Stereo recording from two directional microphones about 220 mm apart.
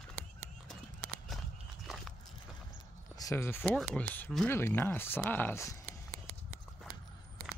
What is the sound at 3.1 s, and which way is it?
Speech, 15° left (ahead or behind).